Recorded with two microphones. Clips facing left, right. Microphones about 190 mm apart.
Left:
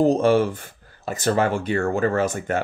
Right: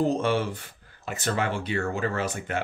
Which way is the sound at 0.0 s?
45° left (ahead or behind).